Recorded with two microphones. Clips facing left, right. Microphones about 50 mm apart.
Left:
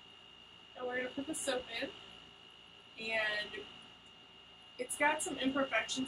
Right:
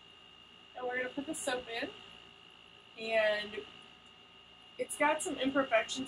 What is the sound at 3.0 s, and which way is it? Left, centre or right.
Speech, centre.